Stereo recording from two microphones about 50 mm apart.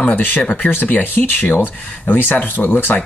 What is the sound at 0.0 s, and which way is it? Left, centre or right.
Speech, left.